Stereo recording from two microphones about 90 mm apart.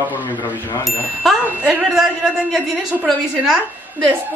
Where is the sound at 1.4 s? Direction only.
5° right (ahead or behind).